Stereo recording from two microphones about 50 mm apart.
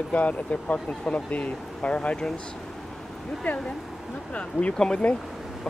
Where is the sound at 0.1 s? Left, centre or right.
Left.